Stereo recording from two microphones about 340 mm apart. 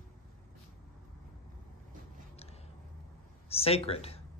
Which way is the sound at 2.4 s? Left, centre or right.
Centre.